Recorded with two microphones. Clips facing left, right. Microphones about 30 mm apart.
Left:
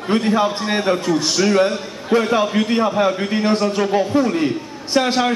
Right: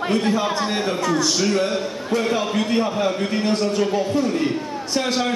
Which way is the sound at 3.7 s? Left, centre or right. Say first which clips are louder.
Left 3 dB; left.